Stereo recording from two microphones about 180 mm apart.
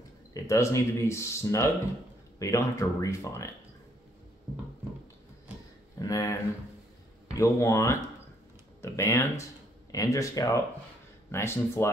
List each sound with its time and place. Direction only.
0.3 s speech: 15° left (ahead or behind)
5.9 s speech: 20° left (ahead or behind)
7.3 s speech: 15° left (ahead or behind)